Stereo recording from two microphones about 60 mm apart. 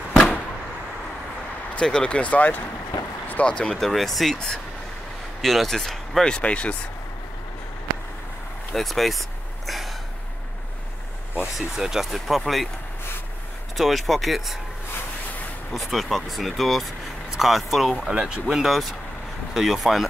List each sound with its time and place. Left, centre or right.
1.8 s speech: centre
3.7 s speech: centre
5.4 s speech: centre
6.2 s speech: centre
8.7 s speech: centre
9.7 s a sound: centre
11.5 s speech: centre
13.7 s speech: centre
15.7 s speech: centre
18.1 s speech: centre
18.5 s speech: centre